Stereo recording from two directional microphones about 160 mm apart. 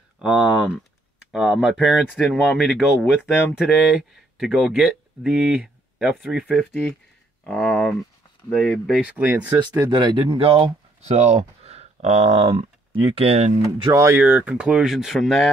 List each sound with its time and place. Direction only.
1.3 s speech: centre (ahead or behind)
9.5 s speech: 25° right (ahead or behind)
13.8 s speech: 20° right (ahead or behind); by 15.5 s centre (ahead or behind)